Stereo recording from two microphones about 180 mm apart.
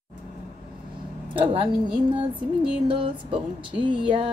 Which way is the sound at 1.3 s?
30° right (ahead or behind).